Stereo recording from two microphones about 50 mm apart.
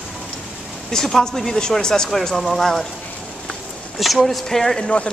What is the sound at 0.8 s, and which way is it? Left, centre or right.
Speech, centre.